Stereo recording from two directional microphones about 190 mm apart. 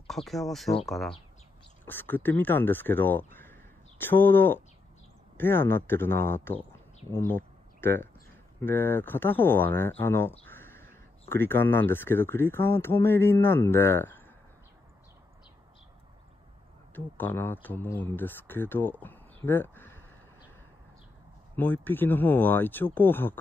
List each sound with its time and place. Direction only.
0.0 s speech: centre (ahead or behind)
16.9 s speech: 10° left (ahead or behind)
21.5 s speech: 10° left (ahead or behind)